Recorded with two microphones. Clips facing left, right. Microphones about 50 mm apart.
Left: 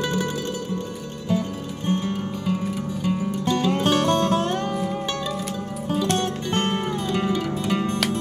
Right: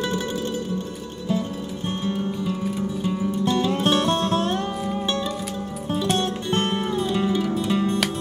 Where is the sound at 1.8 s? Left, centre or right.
Left.